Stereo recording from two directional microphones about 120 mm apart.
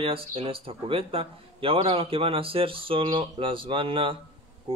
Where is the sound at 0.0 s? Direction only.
50° right (ahead or behind).